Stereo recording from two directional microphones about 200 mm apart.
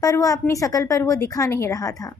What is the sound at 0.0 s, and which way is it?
A woman's voice, 15° left (ahead or behind).